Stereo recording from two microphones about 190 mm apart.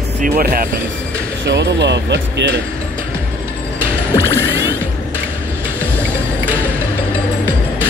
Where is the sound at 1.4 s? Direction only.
65° right (ahead or behind).